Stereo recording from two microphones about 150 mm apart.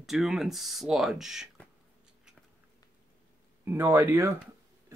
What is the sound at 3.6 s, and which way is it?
Speech, 15° right (ahead or behind).